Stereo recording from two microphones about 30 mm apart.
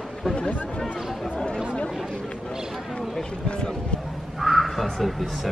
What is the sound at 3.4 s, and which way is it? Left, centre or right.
Speech, left.